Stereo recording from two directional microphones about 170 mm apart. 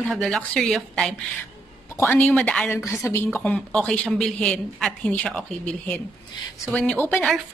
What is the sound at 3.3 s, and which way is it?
A woman's voice, 5° left (ahead or behind).